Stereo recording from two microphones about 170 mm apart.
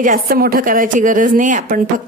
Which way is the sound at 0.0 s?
55° right (ahead or behind).